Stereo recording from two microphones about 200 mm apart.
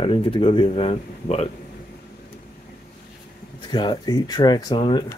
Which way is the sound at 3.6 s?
20° left (ahead or behind).